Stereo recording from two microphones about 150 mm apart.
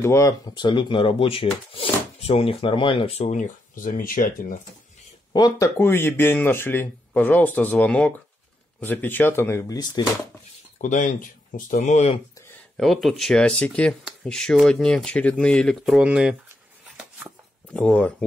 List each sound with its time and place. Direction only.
0.0 s speech: 20° left (ahead or behind); by 4.6 s 70° left (ahead or behind)
5.3 s speech: 25° left (ahead or behind)
5.8 s speech: 15° left (ahead or behind)
10.8 s speech: 55° left (ahead or behind)
12.7 s speech: centre (ahead or behind)
15.8 s speech: 5° right (ahead or behind)
16.8 s a sound: 5° right (ahead or behind)
17.7 s speech: 10° left (ahead or behind)